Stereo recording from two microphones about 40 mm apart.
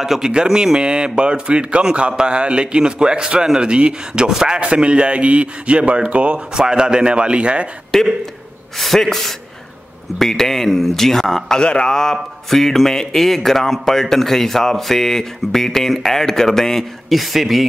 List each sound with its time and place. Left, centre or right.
0.0 s a man's voice: centre
4.6 s a man's voice: right
7.9 s a man's voice: centre
11.6 s speech: left
11.9 s speech: centre